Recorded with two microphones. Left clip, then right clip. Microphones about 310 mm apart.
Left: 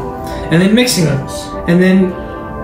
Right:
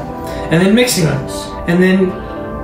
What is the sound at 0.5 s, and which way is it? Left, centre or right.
Speech, centre.